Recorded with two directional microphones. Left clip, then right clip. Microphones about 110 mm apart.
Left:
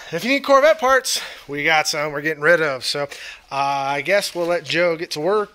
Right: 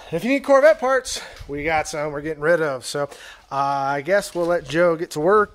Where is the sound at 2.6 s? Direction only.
30° right (ahead or behind).